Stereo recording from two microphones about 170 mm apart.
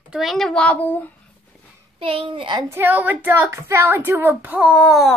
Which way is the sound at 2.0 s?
30° right (ahead or behind).